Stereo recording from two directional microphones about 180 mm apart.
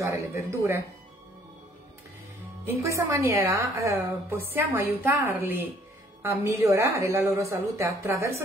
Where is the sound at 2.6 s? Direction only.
15° right (ahead or behind).